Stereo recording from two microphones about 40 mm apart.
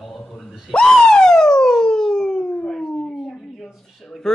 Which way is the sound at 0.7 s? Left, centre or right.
Centre.